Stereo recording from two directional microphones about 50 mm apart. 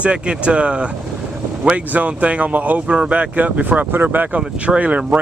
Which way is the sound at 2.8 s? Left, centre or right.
Right.